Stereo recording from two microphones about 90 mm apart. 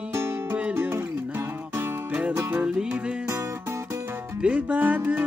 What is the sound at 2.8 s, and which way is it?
Music, 10° right (ahead or behind).